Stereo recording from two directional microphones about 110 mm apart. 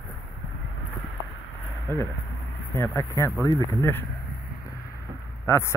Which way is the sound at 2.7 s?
25° left (ahead or behind).